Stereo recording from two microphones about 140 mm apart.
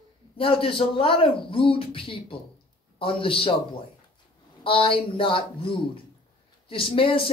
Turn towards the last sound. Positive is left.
turn(degrees=40)  # may be behind; listen again after turning